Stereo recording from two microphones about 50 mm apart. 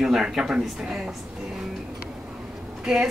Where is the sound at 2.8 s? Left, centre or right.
Centre.